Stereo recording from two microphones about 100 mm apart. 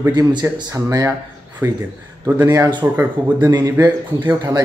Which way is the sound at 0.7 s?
35° right (ahead or behind).